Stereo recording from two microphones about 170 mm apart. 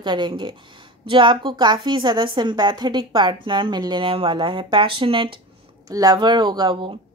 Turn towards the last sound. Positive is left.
turn(degrees=-25)  # may be behind; listen again after turning